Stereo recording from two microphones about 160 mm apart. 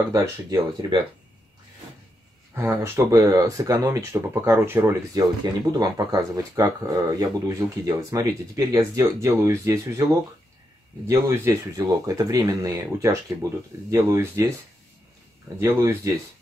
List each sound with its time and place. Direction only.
0.1 s speech: 20° right (ahead or behind)
2.5 s speech: 15° right (ahead or behind)
5.7 s speech: 25° right (ahead or behind)
11.1 s speech: 15° right (ahead or behind)
15.6 s speech: 15° right (ahead or behind)